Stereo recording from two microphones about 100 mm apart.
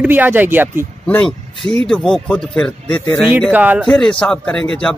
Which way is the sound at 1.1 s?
10° left (ahead or behind).